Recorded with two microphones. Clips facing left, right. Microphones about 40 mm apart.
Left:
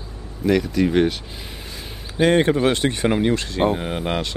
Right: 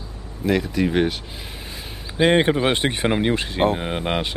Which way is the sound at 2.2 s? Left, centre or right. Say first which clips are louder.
Even; right.